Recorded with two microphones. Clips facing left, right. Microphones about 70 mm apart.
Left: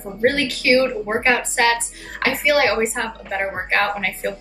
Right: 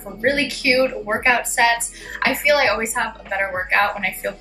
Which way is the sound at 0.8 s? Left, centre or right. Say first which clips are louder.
Even; centre.